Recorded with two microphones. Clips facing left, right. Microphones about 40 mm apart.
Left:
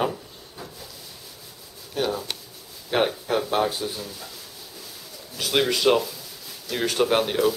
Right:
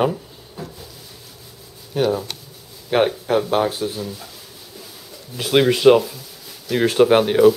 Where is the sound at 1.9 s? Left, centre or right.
Centre.